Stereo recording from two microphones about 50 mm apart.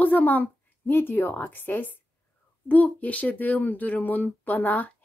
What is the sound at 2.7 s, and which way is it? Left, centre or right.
Speech, left.